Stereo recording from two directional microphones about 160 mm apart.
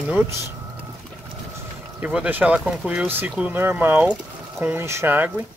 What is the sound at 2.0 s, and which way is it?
Speech, 10° right (ahead or behind).